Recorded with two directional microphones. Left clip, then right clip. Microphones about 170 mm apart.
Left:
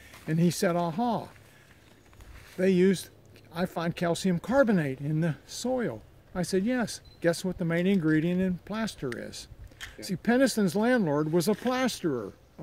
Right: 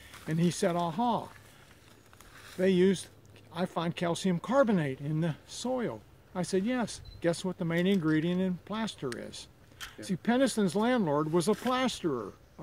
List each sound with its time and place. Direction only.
0.3 s speech: 50° left (ahead or behind)
2.6 s speech: 50° left (ahead or behind)